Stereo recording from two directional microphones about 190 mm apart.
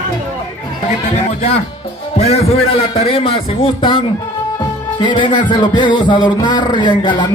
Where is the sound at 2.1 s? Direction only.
35° left (ahead or behind).